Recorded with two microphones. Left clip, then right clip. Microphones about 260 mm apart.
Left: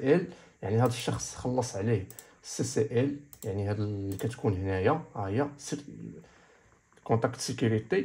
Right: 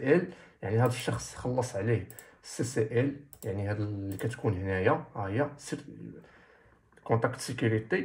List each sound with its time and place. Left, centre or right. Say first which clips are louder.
0.0 s speech: even; left
7.0 s speech: even; left